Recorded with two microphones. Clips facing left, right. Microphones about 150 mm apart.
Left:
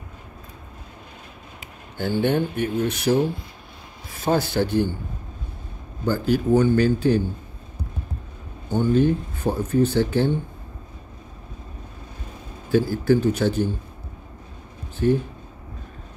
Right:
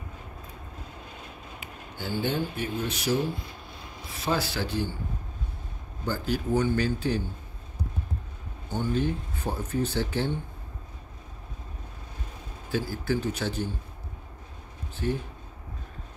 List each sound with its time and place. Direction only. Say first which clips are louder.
2.0 s speech: left 8 dB; 60° left (ahead or behind)
4.2 s a man's voice: left 7 dB; 55° left (ahead or behind)
6.0 s a man's voice: left 8 dB; 55° left (ahead or behind)
8.7 s speech: left 9 dB; 55° left (ahead or behind)
12.7 s a man's voice: left 10 dB; 50° left (ahead or behind)
15.0 s a man's voice: left 10 dB; 50° left (ahead or behind)